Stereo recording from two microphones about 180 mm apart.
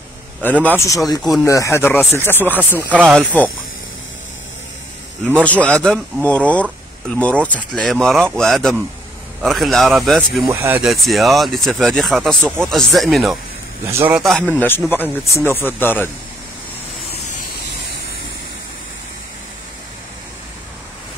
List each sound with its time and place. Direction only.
0.4 s speech: 10° left (ahead or behind)
5.4 s speech: 5° left (ahead or behind)
10.5 s a man's voice: 15° right (ahead or behind)
10.8 s speech: centre (ahead or behind)
13.8 s a man's voice: 10° right (ahead or behind)
14.2 s speech: centre (ahead or behind)